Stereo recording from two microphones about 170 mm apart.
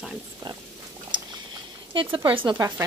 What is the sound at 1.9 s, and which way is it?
Speech, 30° right (ahead or behind).